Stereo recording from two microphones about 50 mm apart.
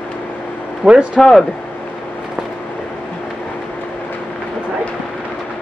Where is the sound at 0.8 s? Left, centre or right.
Centre.